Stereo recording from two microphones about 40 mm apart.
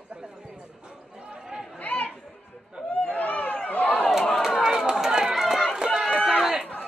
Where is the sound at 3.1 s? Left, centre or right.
Left.